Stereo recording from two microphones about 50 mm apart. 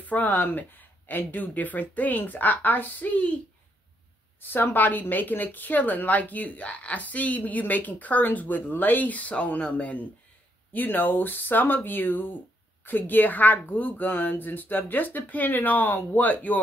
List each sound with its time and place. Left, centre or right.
0.0 s speech: left
4.4 s a woman's voice: left